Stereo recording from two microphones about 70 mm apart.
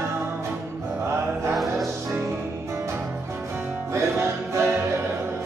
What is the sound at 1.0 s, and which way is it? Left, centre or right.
Music, right.